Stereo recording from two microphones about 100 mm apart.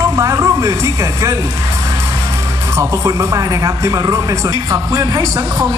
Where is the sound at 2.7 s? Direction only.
30° right (ahead or behind).